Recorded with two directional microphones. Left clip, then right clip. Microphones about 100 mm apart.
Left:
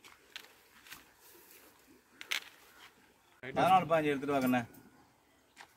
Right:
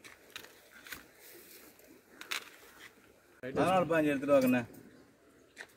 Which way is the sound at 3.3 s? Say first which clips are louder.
Left 2 dB; 50° left (ahead or behind).